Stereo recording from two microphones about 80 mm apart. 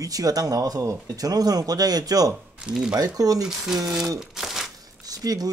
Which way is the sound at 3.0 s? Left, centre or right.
Right.